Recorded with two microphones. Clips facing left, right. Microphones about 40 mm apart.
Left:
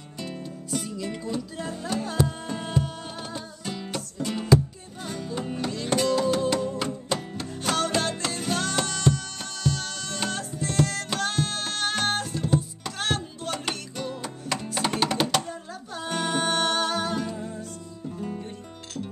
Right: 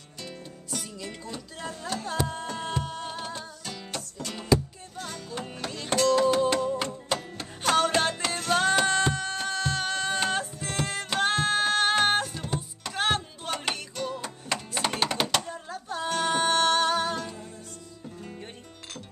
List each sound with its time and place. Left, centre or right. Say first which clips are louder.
0.7 s music: left 6 dB; centre
3.6 s music: left 4 dB; centre
5.4 s music: left 6 dB; centre
13.9 s music: even; centre